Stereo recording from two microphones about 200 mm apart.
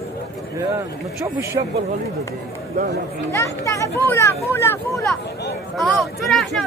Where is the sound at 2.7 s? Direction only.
60° right (ahead or behind).